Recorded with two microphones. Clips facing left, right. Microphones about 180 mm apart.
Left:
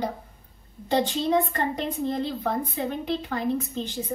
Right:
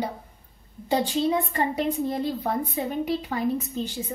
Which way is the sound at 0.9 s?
10° right (ahead or behind).